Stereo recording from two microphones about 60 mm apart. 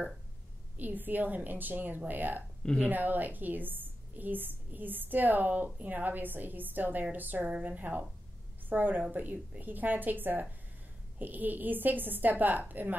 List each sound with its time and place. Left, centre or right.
0.7 s a woman's voice: right